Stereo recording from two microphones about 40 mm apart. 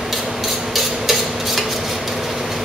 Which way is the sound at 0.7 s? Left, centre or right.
Centre.